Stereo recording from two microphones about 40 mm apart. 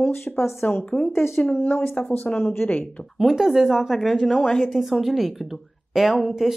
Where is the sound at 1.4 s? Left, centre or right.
Left.